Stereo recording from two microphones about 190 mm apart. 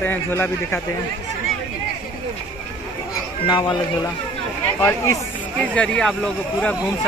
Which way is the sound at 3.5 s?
25° left (ahead or behind).